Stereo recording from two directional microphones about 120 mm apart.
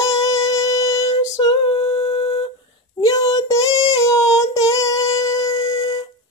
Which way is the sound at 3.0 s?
30° left (ahead or behind).